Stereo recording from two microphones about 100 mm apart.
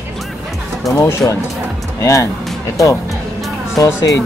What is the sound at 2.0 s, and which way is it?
Speech, 30° left (ahead or behind).